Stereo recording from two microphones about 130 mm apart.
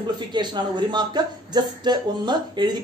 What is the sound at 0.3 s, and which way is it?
A man's voice, 35° right (ahead or behind).